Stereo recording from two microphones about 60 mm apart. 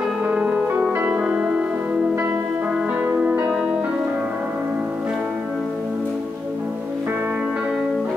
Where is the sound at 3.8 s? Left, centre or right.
Right.